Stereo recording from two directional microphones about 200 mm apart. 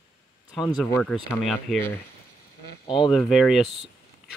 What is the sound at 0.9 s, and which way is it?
Speech, 10° left (ahead or behind).